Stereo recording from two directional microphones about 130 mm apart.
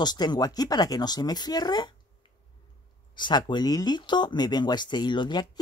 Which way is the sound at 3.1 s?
35° left (ahead or behind).